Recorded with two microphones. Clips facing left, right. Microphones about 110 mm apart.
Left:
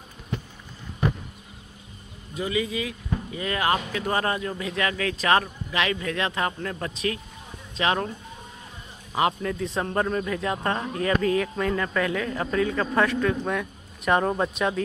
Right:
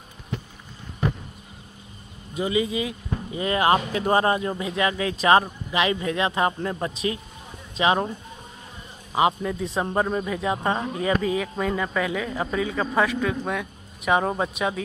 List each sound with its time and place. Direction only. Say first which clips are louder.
2.3 s speech: right 3 dB; 20° right (ahead or behind)
9.1 s a man's voice: right 2 dB; 10° right (ahead or behind)